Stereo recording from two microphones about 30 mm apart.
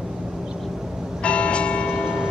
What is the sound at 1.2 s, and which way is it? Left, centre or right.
Church bell, left.